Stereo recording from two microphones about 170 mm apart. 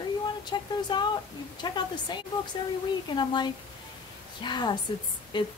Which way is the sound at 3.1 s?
25° left (ahead or behind).